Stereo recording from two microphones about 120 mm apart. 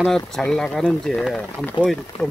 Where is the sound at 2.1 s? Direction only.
55° left (ahead or behind).